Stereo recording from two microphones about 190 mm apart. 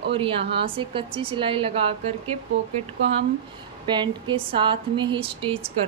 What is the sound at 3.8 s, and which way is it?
A woman's voice, 25° right (ahead or behind).